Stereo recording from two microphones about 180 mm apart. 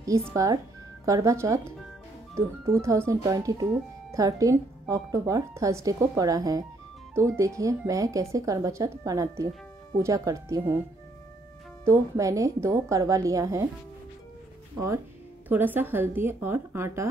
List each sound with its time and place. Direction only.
0.3 s speech: 20° right (ahead or behind)
2.6 s speech: 15° right (ahead or behind)
11.8 s speech: 15° right (ahead or behind)
15.4 s speech: 10° right (ahead or behind)